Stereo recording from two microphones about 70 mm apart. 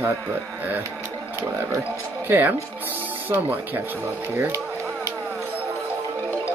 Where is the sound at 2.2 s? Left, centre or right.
Right.